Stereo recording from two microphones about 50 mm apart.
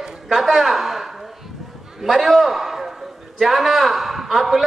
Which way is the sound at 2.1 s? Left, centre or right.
Centre.